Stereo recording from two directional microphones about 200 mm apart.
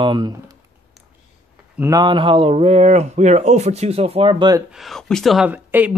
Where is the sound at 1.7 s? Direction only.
15° right (ahead or behind).